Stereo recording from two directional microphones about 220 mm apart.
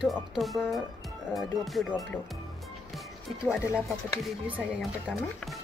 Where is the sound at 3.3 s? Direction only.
Centre (ahead or behind).